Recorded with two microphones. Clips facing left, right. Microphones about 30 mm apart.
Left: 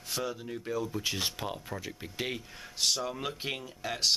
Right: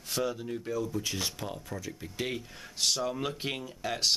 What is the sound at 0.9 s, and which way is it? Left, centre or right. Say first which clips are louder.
Speech: left 1 dB; left.